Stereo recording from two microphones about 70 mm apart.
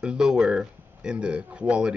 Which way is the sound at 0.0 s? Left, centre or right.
Centre.